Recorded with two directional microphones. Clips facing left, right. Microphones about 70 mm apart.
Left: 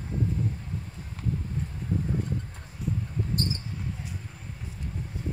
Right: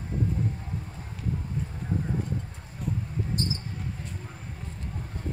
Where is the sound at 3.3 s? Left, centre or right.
Left.